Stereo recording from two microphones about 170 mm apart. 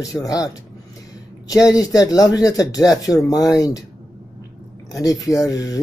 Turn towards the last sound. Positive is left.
turn(degrees=20)  # may be behind; listen again after turning